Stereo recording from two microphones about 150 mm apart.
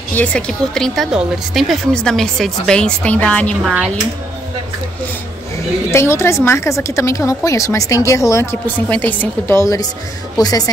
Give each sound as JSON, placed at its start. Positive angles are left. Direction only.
{"t": 0.1, "sound": "a woman's voice", "side_deg": 10}
{"t": 5.9, "sound": "a woman's voice", "side_deg": 20}